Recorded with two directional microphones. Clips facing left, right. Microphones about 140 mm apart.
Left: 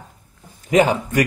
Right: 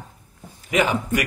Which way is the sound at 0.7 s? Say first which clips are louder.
Left 5 dB; 40° left (ahead or behind).